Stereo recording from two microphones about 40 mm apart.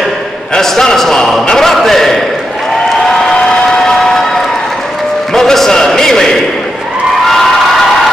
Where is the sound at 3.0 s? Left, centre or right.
Centre.